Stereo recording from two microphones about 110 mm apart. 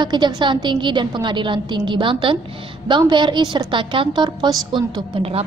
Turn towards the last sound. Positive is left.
turn(degrees=-60)  # may be behind; listen again after turning